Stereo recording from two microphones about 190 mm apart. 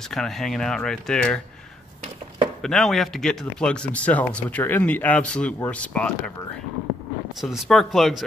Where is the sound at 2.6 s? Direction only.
Centre (ahead or behind).